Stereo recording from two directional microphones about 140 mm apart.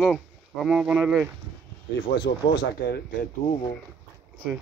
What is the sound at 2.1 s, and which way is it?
Speech, 35° left (ahead or behind).